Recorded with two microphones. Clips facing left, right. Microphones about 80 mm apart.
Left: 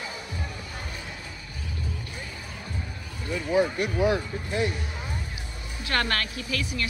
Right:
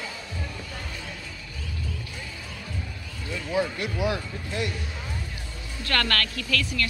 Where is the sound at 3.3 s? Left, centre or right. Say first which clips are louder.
Left 3 dB; centre.